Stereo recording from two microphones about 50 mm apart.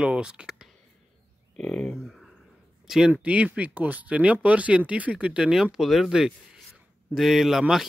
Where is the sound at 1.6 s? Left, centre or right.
Centre.